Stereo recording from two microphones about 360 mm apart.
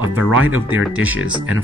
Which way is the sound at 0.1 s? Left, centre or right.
Right.